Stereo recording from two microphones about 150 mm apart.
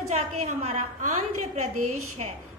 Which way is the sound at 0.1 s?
45° right (ahead or behind).